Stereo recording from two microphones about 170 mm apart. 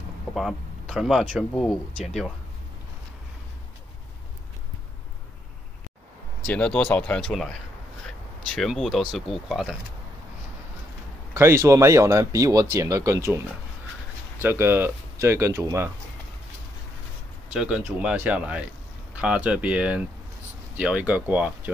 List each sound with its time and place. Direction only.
0.3 s speech: centre (ahead or behind)
6.4 s speech: 10° left (ahead or behind)
11.3 s speech: 15° right (ahead or behind)
14.4 s speech: 15° right (ahead or behind)
17.5 s speech: 5° right (ahead or behind)